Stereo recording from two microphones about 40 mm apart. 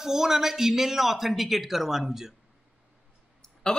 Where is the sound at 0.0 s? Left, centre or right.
Centre.